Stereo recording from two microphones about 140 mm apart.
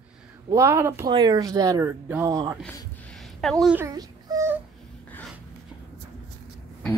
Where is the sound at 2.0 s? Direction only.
15° right (ahead or behind).